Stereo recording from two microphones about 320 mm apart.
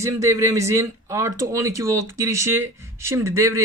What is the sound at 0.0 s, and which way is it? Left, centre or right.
Speech, centre.